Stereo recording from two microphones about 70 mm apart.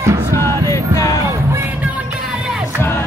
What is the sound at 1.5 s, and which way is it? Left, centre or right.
Music, right.